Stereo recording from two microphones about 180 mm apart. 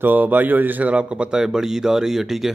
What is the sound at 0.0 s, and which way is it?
Speech, 10° right (ahead or behind).